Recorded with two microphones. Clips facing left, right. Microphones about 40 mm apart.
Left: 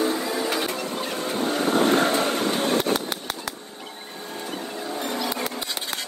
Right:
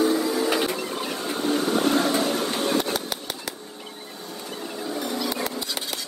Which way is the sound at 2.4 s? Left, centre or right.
Left.